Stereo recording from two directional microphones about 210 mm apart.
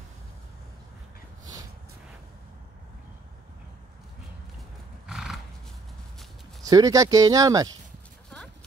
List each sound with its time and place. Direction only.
5.0 s horse: centre (ahead or behind)
6.6 s speech: 15° right (ahead or behind)